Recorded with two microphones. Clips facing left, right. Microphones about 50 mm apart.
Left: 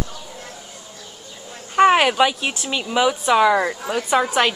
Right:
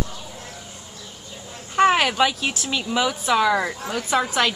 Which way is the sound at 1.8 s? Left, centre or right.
Centre.